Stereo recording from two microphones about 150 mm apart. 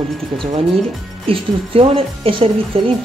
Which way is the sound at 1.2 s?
40° right (ahead or behind).